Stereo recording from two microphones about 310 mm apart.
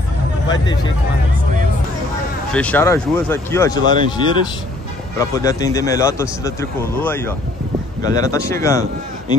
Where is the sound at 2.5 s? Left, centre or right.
Centre.